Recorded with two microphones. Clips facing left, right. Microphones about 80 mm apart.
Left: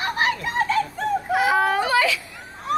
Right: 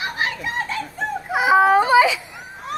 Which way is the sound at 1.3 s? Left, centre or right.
Centre.